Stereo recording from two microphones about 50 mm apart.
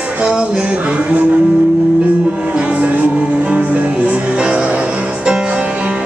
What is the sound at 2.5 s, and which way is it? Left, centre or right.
Music, right.